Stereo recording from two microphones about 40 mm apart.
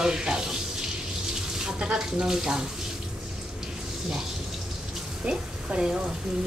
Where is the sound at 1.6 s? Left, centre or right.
Centre.